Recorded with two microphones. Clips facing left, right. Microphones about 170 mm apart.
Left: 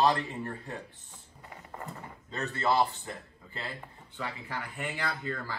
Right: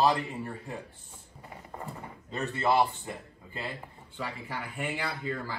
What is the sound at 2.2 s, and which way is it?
Speech, 15° right (ahead or behind).